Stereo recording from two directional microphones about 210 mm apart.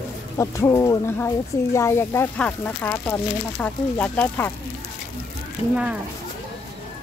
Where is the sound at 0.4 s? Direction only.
15° left (ahead or behind).